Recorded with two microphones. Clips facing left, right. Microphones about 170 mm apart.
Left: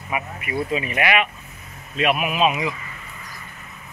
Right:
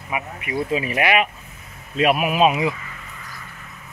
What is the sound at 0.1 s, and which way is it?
Speech, 20° right (ahead or behind).